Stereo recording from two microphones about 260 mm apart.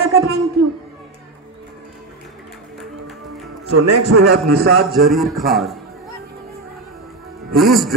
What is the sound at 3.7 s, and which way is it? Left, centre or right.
Speech, right.